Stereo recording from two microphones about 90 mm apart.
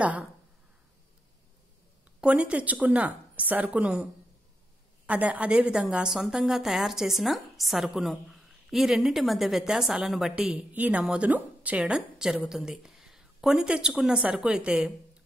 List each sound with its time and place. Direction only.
0.0 s a woman's voice: 15° right (ahead or behind)
2.1 s a woman's voice: 10° right (ahead or behind)
10.7 s a woman's voice: 15° right (ahead or behind)